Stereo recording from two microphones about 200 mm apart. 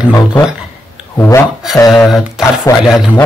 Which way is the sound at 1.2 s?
15° left (ahead or behind).